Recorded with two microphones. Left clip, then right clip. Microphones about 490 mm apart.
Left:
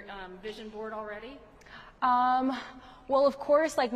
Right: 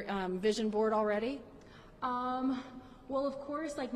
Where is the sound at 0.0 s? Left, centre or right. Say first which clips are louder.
Right 8 dB; right.